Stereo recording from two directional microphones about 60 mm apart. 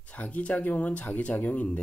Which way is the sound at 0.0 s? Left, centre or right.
Left.